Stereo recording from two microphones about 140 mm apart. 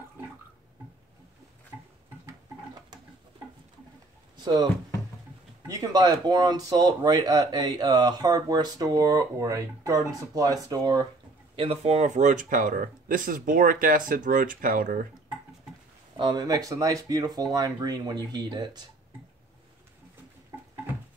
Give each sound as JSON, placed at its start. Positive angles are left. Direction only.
{"t": 2.2, "sound": "a sound", "side_deg": -25}
{"t": 4.4, "sound": "speech", "side_deg": -30}
{"t": 5.7, "sound": "speech", "side_deg": -30}
{"t": 11.5, "sound": "speech", "side_deg": -45}
{"t": 16.2, "sound": "speech", "side_deg": -30}